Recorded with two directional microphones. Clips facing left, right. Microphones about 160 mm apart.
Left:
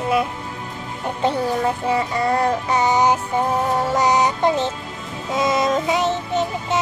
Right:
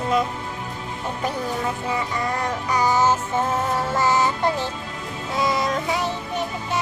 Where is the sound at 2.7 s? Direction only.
20° left (ahead or behind).